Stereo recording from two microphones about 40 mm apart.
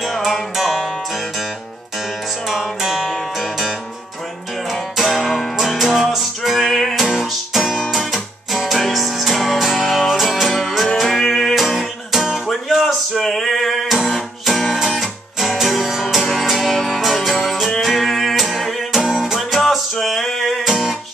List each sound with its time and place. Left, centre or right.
0.0 s music: centre
2.4 s music: centre
5.2 s music: centre
11.0 s music: centre
11.5 s music: centre